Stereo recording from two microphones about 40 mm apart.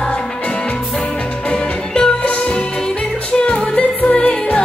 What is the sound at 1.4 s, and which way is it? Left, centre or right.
Music, left.